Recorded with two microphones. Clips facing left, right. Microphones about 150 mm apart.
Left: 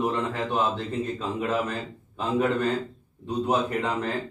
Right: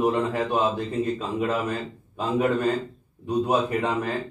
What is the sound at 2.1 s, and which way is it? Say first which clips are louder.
Speech: right 1 dB; 15° right (ahead or behind).